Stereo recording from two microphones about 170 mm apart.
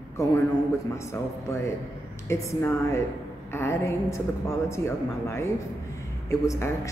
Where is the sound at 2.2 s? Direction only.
15° left (ahead or behind).